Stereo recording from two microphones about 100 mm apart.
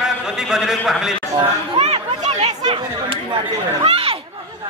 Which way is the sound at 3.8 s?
70° right (ahead or behind).